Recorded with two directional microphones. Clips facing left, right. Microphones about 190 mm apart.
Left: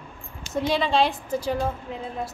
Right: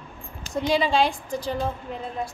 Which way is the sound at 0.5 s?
Centre (ahead or behind).